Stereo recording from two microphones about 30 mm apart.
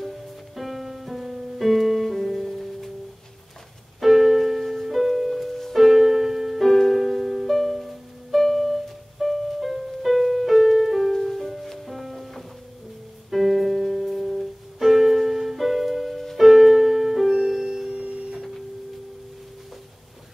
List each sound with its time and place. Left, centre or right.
0.6 s music: centre
4.0 s music: centre
11.1 s music: centre
17.9 s music: right